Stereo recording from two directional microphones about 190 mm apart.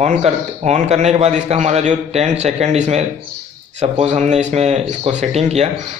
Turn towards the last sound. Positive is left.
turn(degrees=-35)  # may be behind; listen again after turning